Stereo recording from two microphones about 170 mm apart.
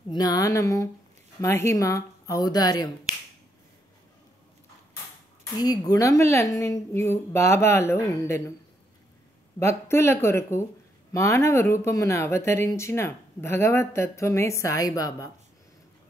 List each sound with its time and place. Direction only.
0.1 s speech: 20° left (ahead or behind)
5.6 s speech: 20° left (ahead or behind)
9.6 s speech: 15° left (ahead or behind)